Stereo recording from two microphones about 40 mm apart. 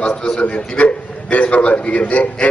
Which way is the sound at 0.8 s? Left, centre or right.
Left.